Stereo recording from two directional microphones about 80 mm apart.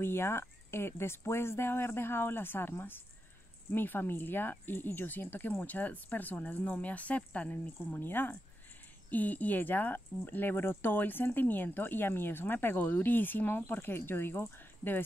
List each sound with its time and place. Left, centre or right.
0.0 s speech: left